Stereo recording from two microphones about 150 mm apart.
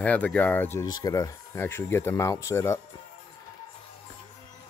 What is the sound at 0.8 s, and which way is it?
Speech, 25° left (ahead or behind).